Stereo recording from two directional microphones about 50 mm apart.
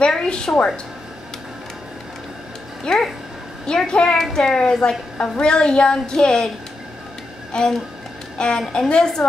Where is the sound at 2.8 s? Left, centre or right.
Centre.